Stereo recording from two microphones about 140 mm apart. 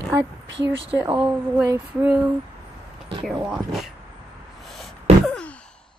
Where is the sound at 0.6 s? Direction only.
40° right (ahead or behind).